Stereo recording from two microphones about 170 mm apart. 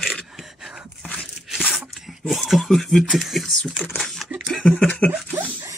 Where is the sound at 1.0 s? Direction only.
5° left (ahead or behind).